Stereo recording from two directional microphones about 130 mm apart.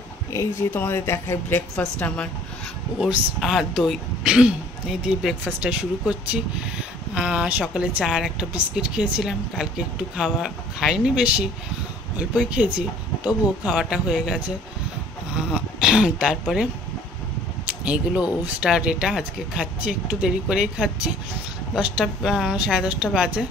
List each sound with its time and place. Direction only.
0.3 s speech: 20° left (ahead or behind)
1.8 s a woman's voice: 10° left (ahead or behind)
3.0 s speech: 5° right (ahead or behind)
12.5 s speech: 10° right (ahead or behind)
17.6 s speech: 10° right (ahead or behind)